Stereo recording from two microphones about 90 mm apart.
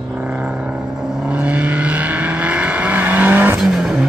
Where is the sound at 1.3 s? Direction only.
15° right (ahead or behind).